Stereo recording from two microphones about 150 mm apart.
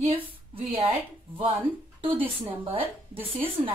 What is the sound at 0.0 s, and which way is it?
A woman's voice, 40° right (ahead or behind).